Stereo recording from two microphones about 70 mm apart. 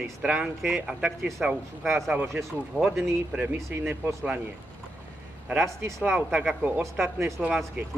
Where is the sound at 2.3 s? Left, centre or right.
Centre.